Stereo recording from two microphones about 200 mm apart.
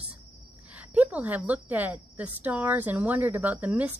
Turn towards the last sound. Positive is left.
turn(degrees=-5)  # may be behind; listen again after turning